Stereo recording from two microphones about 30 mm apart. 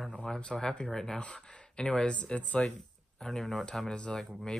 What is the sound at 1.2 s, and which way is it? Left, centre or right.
Speech, left.